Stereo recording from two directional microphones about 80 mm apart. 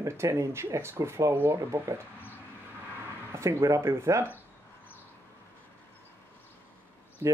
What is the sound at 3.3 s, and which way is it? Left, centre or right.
Speech, right.